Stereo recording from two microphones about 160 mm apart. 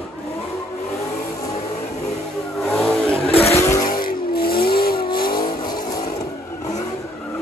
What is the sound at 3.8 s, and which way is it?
Vehicle, 65° left (ahead or behind).